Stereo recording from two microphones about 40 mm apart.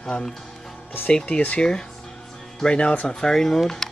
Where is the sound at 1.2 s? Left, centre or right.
Left.